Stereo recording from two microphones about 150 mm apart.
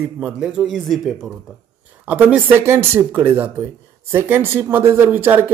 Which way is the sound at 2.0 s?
10° right (ahead or behind).